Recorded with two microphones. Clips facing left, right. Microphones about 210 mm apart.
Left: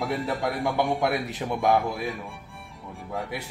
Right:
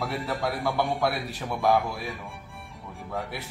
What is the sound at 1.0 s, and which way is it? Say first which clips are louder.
Speech: left 2 dB; 20° left (ahead or behind).